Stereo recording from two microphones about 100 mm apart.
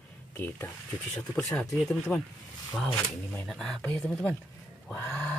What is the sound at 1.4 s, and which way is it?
Speech, 5° left (ahead or behind).